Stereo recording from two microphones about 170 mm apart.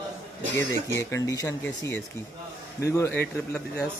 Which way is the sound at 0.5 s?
15° left (ahead or behind).